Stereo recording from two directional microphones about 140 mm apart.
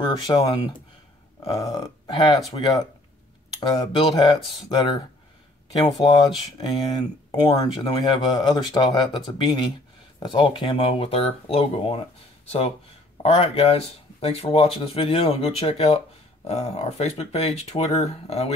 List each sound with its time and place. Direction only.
0.0 s speech: 30° left (ahead or behind)
1.6 s speech: 25° left (ahead or behind)
3.6 s speech: 30° left (ahead or behind); by 18.5 s 50° left (ahead or behind)